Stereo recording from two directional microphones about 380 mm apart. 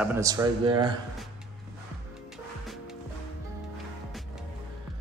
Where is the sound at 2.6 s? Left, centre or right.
Centre.